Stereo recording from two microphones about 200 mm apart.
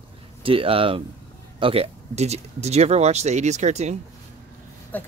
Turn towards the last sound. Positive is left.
turn(degrees=10)  # may be behind; listen again after turning